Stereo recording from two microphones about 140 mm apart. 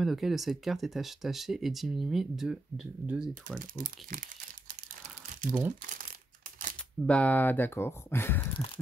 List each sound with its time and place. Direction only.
0.0 s speech: centre (ahead or behind)
3.7 s speech: 75° right (ahead or behind)
5.2 s crumpling: 70° right (ahead or behind)
7.1 s speech: 10° left (ahead or behind)